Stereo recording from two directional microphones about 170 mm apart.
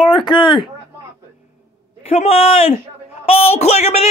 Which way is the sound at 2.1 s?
35° left (ahead or behind).